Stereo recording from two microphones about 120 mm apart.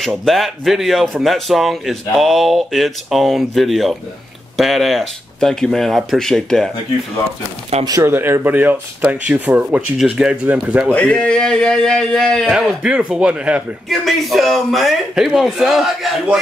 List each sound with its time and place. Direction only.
0.2 s speech: centre (ahead or behind)
7.8 s speech: 30° right (ahead or behind)
8.1 s speech: 15° right (ahead or behind)
10.9 s speech: 10° left (ahead or behind)
12.5 s speech: 10° right (ahead or behind)
13.8 s speech: centre (ahead or behind)